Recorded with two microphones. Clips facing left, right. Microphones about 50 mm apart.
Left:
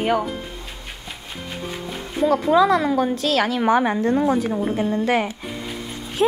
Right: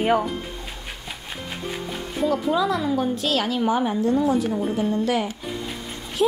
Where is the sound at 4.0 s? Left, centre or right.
Left.